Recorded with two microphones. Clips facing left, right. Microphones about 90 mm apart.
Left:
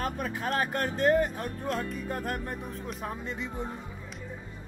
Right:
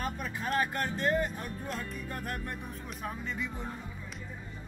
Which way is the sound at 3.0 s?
25° left (ahead or behind).